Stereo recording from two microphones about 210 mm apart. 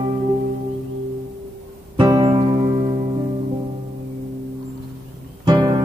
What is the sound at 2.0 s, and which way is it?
Music, 25° right (ahead or behind).